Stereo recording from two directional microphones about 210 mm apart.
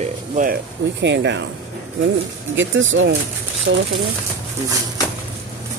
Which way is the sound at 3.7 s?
55° right (ahead or behind).